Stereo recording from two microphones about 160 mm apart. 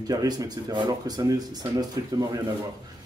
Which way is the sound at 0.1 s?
20° right (ahead or behind).